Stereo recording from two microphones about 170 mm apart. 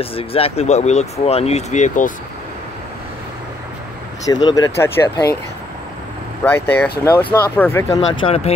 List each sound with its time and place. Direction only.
0.0 s speech: 35° left (ahead or behind)
4.3 s speech: 25° left (ahead or behind)
6.4 s speech: 10° left (ahead or behind)
8.1 s speech: 30° left (ahead or behind)